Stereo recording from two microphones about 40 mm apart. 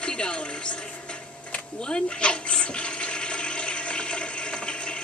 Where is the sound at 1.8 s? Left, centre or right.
Left.